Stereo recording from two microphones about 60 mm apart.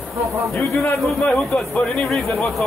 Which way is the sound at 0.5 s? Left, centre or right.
Left.